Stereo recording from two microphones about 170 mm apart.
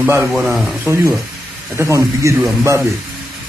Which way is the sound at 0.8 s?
15° right (ahead or behind).